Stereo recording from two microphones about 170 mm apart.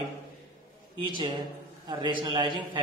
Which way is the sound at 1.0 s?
25° right (ahead or behind).